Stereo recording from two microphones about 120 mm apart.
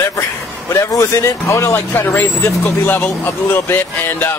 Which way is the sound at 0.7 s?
25° left (ahead or behind).